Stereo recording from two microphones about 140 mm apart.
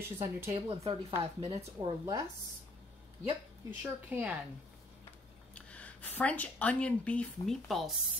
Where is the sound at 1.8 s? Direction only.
30° right (ahead or behind).